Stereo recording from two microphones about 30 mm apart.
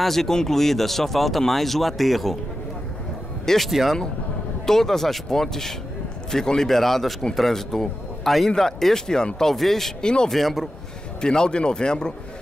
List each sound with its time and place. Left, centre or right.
0.0 s speech: centre
3.5 s speech: centre
4.6 s speech: centre
6.7 s a man's voice: centre
10.0 s a man's voice: left
10.3 s speech: centre
11.1 s a man's voice: left